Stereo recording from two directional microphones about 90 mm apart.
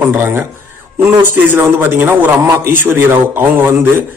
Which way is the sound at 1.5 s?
25° right (ahead or behind).